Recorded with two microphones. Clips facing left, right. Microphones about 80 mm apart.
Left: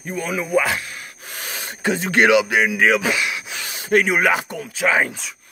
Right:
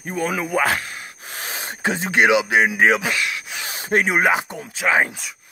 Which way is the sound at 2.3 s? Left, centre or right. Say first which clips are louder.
Left 1 dB; right.